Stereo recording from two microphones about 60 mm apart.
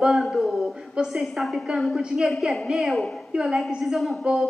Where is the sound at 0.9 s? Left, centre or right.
Centre.